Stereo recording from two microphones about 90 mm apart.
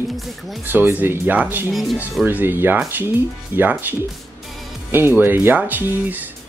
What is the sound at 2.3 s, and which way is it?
Speech, 25° right (ahead or behind).